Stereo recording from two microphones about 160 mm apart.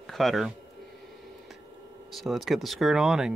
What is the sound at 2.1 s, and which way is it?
Speech, centre (ahead or behind).